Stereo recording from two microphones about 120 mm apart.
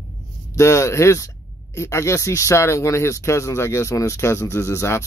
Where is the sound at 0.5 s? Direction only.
25° left (ahead or behind).